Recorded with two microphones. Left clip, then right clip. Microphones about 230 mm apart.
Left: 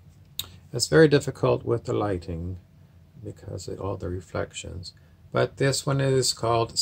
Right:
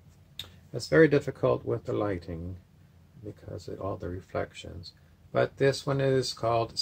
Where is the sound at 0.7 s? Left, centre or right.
Left.